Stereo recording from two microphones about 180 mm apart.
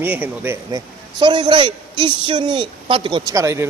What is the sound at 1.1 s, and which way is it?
A man's voice, 25° right (ahead or behind).